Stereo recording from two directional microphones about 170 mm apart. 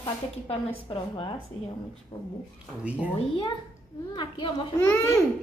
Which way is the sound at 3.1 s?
30° left (ahead or behind).